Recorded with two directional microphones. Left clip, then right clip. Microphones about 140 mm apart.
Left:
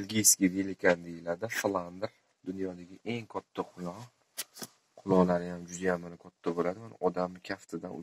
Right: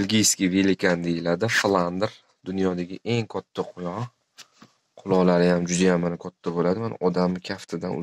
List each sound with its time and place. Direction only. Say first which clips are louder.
0.0 s speech: right 6 dB; 20° right (ahead or behind)
2.8 s speech: right 12 dB; 30° right (ahead or behind)
3.3 s speech: right 7 dB; 20° right (ahead or behind)
5.0 s speech: right 8 dB; 20° right (ahead or behind)